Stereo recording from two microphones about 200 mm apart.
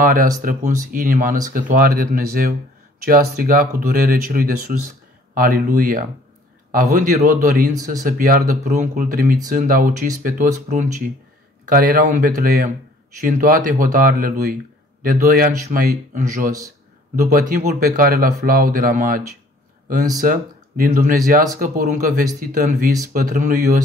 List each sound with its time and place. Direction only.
0.0 s speech: 45° right (ahead or behind)